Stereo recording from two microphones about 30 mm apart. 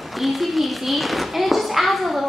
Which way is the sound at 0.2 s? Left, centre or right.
Centre.